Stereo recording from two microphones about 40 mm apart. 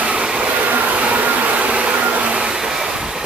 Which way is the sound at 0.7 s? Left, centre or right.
Right.